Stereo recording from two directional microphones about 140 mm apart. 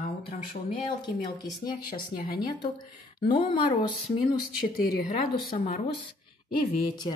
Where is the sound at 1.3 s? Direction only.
30° left (ahead or behind).